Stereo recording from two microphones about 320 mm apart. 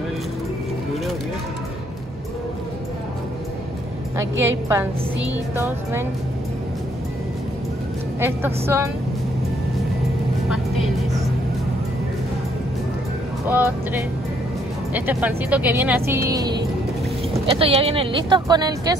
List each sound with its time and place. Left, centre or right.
4.2 s a woman's voice: centre
8.2 s a woman's voice: centre
15.0 s a woman's voice: centre